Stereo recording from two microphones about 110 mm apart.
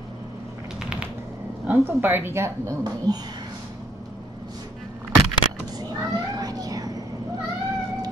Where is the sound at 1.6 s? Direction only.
20° right (ahead or behind).